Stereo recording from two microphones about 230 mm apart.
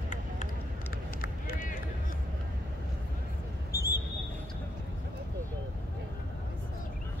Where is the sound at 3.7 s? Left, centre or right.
Left.